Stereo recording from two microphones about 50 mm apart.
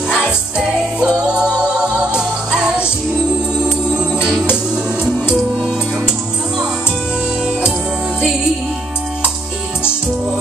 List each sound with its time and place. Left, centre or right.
0.1 s music: centre
4.0 s music: centre